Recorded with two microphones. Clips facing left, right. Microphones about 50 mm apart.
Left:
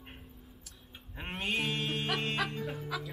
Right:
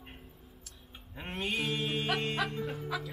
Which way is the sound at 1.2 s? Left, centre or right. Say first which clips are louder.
Even; centre.